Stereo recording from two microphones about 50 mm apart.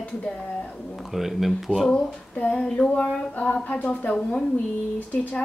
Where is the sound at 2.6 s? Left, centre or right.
Centre.